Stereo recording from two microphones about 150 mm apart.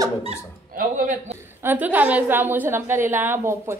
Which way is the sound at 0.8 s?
65° right (ahead or behind).